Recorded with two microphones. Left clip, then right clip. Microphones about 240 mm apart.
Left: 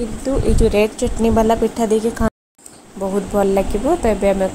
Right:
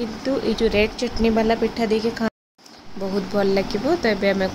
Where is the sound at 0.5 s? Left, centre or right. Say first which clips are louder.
Left 5 dB; centre.